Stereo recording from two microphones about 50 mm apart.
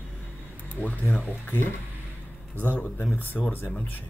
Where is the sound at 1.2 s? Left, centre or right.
Left.